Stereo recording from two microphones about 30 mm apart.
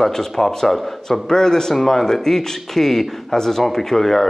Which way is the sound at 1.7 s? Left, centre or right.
Centre.